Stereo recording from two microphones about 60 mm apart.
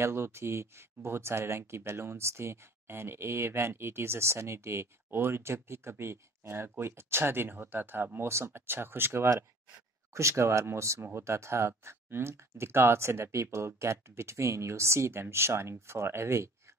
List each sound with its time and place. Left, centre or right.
0.0 s speech: right
8.3 s speech: right